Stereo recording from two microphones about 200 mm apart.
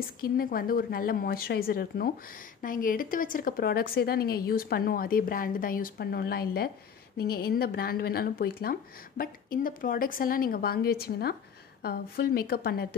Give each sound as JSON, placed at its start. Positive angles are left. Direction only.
{"t": 0.0, "sound": "a woman's voice", "side_deg": 45}